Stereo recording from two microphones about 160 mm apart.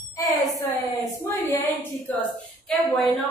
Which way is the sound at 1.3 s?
15° left (ahead or behind).